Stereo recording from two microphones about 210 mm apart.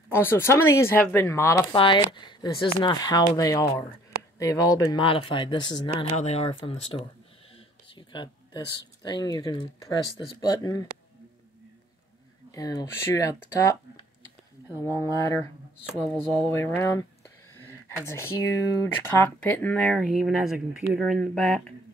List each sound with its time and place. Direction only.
0.1 s speech: 10° left (ahead or behind)
12.4 s speech: 15° left (ahead or behind)
14.8 s speech: 15° left (ahead or behind)
15.9 s speech: 5° left (ahead or behind)
18.0 s speech: 10° left (ahead or behind)